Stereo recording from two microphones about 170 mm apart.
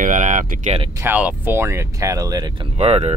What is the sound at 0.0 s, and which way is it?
Speech, 50° right (ahead or behind).